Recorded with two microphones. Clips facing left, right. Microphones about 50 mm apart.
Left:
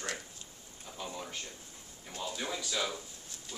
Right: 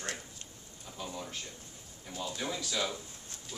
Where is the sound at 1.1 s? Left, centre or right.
Centre.